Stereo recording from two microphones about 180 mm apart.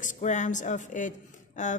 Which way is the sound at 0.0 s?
45° left (ahead or behind).